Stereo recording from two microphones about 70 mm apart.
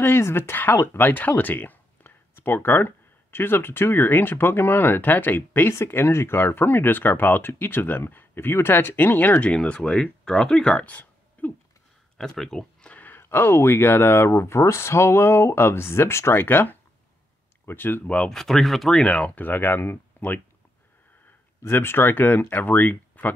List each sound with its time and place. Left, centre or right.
0.0 s speech: left
9.5 s speech: centre
10.9 s a sound: left
12.2 s speech: centre
12.9 s speech: left
18.0 s speech: centre
18.3 s speech: centre
18.9 s speech: centre; by 20.0 s left
21.6 s speech: left